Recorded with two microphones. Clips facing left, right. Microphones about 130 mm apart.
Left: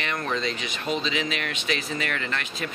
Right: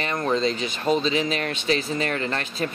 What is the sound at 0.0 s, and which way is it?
Speech, 30° right (ahead or behind).